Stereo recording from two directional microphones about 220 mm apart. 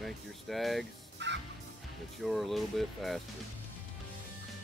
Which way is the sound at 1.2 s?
55° right (ahead or behind).